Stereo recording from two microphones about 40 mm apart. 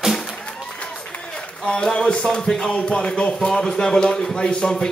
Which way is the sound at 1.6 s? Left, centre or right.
Left.